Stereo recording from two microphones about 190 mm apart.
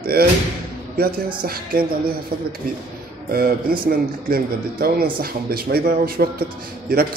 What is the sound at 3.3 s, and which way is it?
Speech, 50° right (ahead or behind).